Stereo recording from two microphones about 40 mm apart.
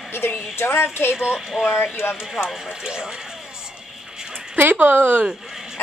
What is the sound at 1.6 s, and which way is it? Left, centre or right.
Speech, right.